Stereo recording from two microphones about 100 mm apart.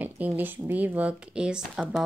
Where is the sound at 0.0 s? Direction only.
20° right (ahead or behind).